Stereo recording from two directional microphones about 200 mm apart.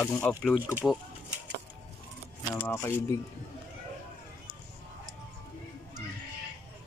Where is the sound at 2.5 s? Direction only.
10° left (ahead or behind).